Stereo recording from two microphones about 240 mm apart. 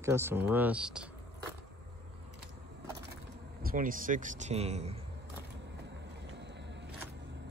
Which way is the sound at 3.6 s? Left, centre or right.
Right.